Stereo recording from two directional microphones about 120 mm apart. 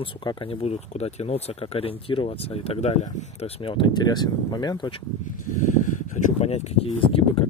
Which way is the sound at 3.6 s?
45° left (ahead or behind).